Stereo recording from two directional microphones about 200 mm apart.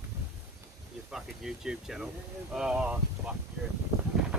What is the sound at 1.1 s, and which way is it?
Speech, centre (ahead or behind).